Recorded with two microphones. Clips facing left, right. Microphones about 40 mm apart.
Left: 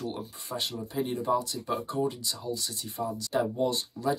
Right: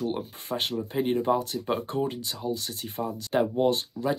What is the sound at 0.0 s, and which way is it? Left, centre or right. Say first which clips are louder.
Speech: right 5 dB; right.